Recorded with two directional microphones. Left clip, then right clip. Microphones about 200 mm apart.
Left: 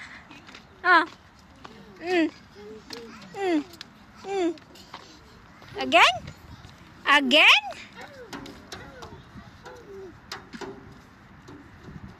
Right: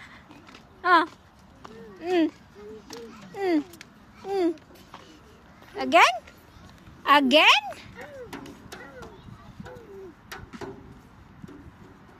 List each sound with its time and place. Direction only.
0.8 s a sound: 10° right (ahead or behind)
2.0 s speech: 15° right (ahead or behind)
2.9 s speech: 5° left (ahead or behind)
3.3 s a sound: 15° right (ahead or behind)
4.3 s speech: 20° right (ahead or behind)
5.8 s a woman's voice: 20° right (ahead or behind)